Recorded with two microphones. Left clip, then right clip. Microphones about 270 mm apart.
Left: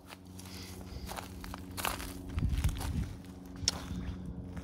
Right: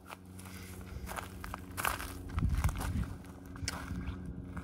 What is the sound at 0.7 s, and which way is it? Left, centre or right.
Walk, centre.